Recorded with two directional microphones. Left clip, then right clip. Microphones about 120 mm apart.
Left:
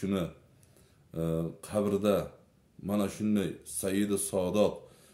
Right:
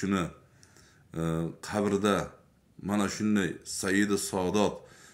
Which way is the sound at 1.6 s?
45° left (ahead or behind).